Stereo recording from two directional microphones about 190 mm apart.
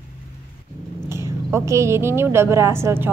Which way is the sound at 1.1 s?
15° right (ahead or behind).